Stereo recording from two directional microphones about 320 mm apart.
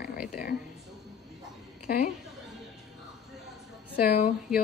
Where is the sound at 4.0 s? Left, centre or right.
Left.